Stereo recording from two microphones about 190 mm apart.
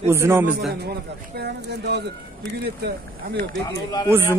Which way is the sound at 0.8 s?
60° right (ahead or behind).